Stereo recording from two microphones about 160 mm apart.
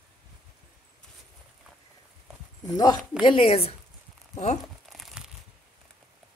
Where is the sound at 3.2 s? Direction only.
35° left (ahead or behind).